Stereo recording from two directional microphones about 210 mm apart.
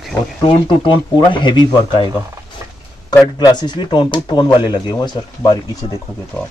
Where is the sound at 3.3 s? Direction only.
20° left (ahead or behind).